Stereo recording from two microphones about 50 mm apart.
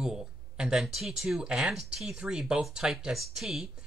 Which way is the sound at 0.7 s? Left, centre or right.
Centre.